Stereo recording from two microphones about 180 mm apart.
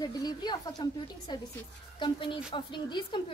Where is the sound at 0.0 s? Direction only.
20° left (ahead or behind).